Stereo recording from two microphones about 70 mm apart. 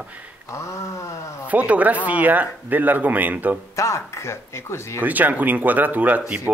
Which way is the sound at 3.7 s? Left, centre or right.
Left.